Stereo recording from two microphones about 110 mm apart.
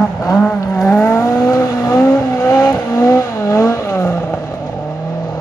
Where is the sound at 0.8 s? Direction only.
20° left (ahead or behind).